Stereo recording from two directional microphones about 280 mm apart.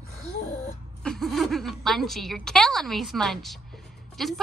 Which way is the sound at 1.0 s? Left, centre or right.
Centre.